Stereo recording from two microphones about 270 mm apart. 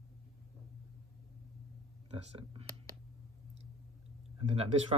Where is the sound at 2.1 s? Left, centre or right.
Right.